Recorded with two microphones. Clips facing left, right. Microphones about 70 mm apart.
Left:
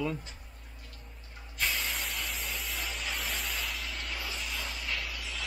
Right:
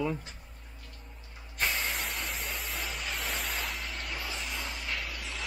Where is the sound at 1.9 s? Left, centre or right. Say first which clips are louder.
Right 1 dB; centre.